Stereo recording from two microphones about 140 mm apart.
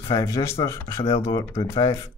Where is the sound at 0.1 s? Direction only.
25° left (ahead or behind).